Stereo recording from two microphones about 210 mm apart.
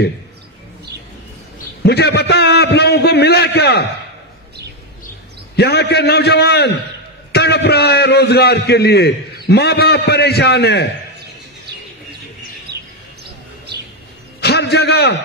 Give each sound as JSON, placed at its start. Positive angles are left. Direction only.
{"t": 1.9, "sound": "a man's voice", "side_deg": 50}
{"t": 5.6, "sound": "a man's voice", "side_deg": 50}
{"t": 14.4, "sound": "a sound", "side_deg": 50}